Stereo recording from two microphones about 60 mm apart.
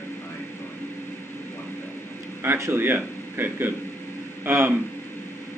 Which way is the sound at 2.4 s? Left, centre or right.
Right.